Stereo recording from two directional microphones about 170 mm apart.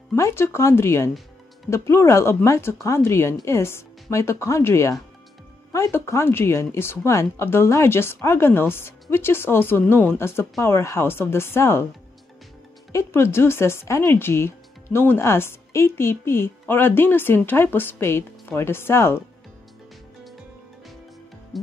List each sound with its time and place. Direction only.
0.1 s speech: 15° left (ahead or behind)
12.9 s speech: 15° left (ahead or behind)